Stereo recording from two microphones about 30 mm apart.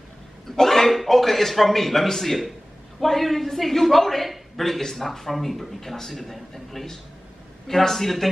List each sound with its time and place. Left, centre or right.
0.6 s a man's voice: centre